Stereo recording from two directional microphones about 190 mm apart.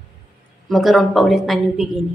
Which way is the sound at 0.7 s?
Centre (ahead or behind).